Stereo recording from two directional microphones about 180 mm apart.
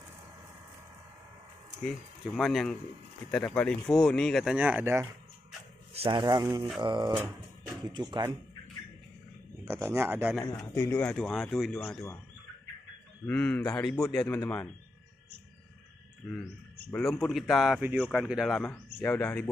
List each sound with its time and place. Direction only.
1.9 s a man's voice: centre (ahead or behind)
4.6 s speech: 10° right (ahead or behind)
5.9 s speech: 25° right (ahead or behind)
7.2 s music: 20° right (ahead or behind)
9.7 s speech: 15° right (ahead or behind)
10.7 s a man's voice: 15° left (ahead or behind)
13.3 s speech: 10° left (ahead or behind)
16.9 s a man's voice: centre (ahead or behind)